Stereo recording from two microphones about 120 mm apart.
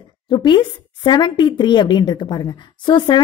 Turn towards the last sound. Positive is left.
turn(degrees=40)  # may be behind; listen again after turning